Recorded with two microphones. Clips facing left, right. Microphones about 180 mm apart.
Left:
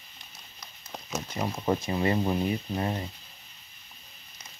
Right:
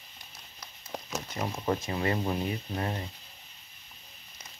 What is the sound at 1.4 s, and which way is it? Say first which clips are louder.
Speech: left 3 dB; 15° left (ahead or behind).